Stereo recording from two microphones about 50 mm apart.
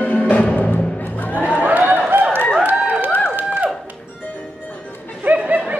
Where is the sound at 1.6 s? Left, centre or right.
Right.